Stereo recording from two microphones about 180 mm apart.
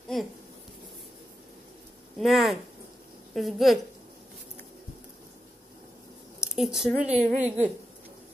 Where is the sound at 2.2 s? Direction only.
Centre (ahead or behind).